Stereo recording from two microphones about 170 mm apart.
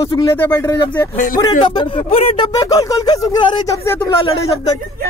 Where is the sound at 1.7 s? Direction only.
30° left (ahead or behind).